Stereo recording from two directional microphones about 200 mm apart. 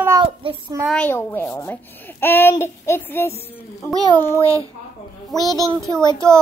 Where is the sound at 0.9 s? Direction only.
10° left (ahead or behind).